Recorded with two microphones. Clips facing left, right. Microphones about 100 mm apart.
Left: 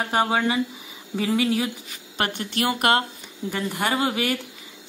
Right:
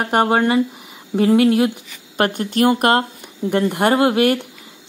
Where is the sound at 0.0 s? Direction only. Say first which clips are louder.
Right 6 dB; 55° right (ahead or behind).